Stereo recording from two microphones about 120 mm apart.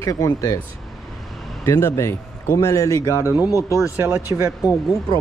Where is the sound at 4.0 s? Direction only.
20° right (ahead or behind).